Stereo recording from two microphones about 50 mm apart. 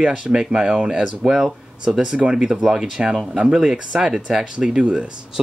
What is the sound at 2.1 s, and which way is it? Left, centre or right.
Speech, centre.